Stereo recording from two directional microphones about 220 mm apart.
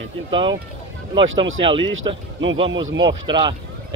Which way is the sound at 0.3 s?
20° right (ahead or behind).